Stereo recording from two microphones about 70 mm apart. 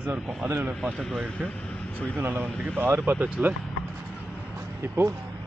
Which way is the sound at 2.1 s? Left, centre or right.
Right.